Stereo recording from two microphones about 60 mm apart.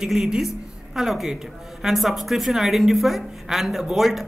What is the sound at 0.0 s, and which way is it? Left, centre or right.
A woman's voice, centre.